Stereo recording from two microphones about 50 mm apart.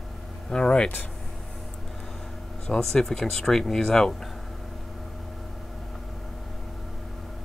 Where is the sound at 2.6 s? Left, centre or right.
Centre.